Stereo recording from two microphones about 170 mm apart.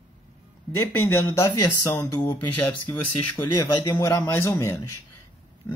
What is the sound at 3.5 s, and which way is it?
Speech, 25° left (ahead or behind).